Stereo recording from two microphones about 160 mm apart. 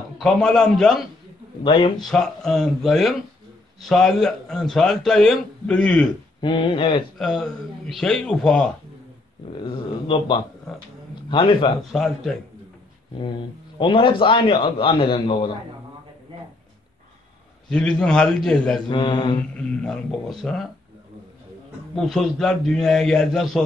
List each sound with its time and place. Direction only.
0.2 s a man's voice: 5° left (ahead or behind)
1.6 s a man's voice: 30° left (ahead or behind)
2.0 s a man's voice: 5° left (ahead or behind)
6.4 s a man's voice: 30° left (ahead or behind)
7.2 s a man's voice: centre (ahead or behind)
9.7 s a man's voice: 30° left (ahead or behind)
11.9 s a man's voice: centre (ahead or behind)
13.7 s a man's voice: 30° left (ahead or behind)
17.6 s a man's voice: 5° left (ahead or behind)
18.9 s mantra: 30° left (ahead or behind)
19.5 s a man's voice: 5° left (ahead or behind)
21.9 s a man's voice: 5° left (ahead or behind)